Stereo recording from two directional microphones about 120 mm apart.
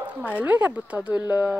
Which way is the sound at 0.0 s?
10° right (ahead or behind).